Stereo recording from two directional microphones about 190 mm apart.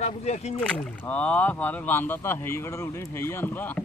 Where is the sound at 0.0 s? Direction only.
35° left (ahead or behind).